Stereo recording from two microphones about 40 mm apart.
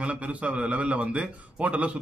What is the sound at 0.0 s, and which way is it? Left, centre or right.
A man's voice, right.